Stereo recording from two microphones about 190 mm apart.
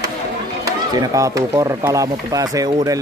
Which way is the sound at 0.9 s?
20° right (ahead or behind).